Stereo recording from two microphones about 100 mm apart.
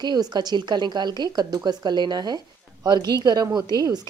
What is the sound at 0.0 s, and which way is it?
A woman's voice, 45° right (ahead or behind).